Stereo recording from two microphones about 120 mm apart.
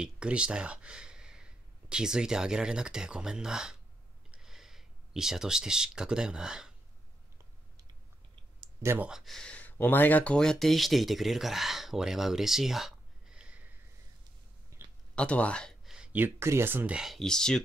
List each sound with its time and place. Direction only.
0.0 s speech: 10° right (ahead or behind)
8.8 s speech: 15° right (ahead or behind)
9.1 s speech: centre (ahead or behind)
14.8 s a sound: 20° right (ahead or behind)
15.1 s speech: 10° left (ahead or behind)
15.9 s speech: 10° right (ahead or behind)